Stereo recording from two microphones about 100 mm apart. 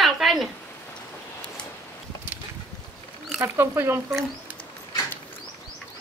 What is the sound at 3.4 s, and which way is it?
Speech, 25° right (ahead or behind).